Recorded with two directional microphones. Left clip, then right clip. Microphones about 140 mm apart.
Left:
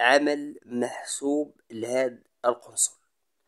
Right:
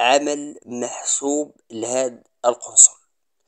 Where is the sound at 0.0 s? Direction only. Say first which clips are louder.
Right 3 dB; centre (ahead or behind).